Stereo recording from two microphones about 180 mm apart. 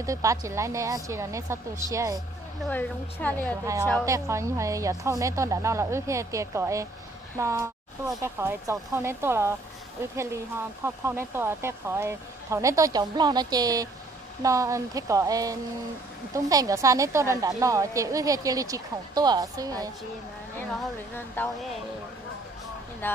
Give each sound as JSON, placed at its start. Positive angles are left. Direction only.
{"t": 0.0, "sound": "speech", "side_deg": -15}
{"t": 2.7, "sound": "a woman's voice", "side_deg": 10}
{"t": 4.0, "sound": "a woman's voice", "side_deg": -15}
{"t": 21.4, "sound": "a woman's voice", "side_deg": 10}
{"t": 23.0, "sound": "a woman's voice", "side_deg": 10}